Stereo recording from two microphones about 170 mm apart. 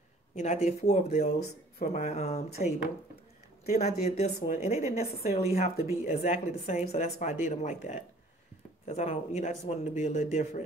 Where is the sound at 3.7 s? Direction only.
40° left (ahead or behind).